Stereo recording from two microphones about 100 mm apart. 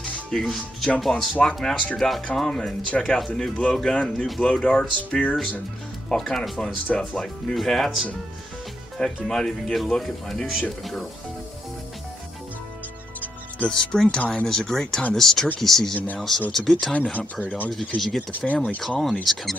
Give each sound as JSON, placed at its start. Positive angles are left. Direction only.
{"t": 0.0, "sound": "speech", "side_deg": 5}
{"t": 13.2, "sound": "music", "side_deg": 10}
{"t": 14.1, "sound": "speech", "side_deg": 10}
{"t": 17.7, "sound": "speech", "side_deg": 0}
{"t": 18.5, "sound": "speech", "side_deg": 15}
{"t": 18.8, "sound": "speech", "side_deg": 5}